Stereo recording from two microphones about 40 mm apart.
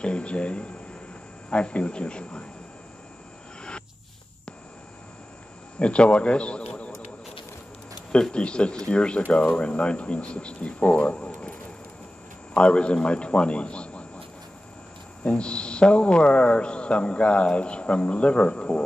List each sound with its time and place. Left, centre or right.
0.0 s a man's voice: left
5.8 s a man's voice: left
8.1 s a man's voice: left
12.5 s a man's voice: left
15.2 s a man's voice: left